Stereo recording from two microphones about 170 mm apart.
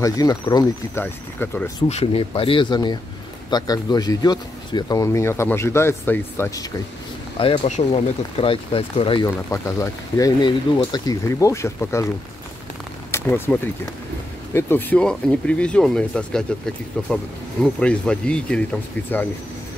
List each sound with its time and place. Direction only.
0.0 s speech: 20° left (ahead or behind)
1.9 s speech: 35° left (ahead or behind); by 6.7 s 15° left (ahead or behind)
7.3 s speech: 30° left (ahead or behind)
9.2 s speech: 15° left (ahead or behind)
13.1 s speech: 10° left (ahead or behind)
17.7 s speech: 5° left (ahead or behind)